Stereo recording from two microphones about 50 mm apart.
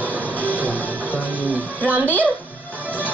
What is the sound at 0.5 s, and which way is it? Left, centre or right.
Music, left.